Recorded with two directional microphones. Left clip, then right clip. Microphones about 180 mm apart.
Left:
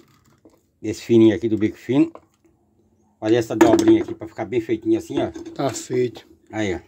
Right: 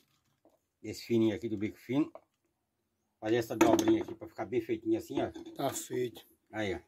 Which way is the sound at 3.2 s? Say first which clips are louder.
Left 12 dB; 20° left (ahead or behind).